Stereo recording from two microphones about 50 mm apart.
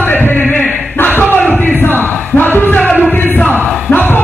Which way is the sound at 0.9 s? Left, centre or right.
Left.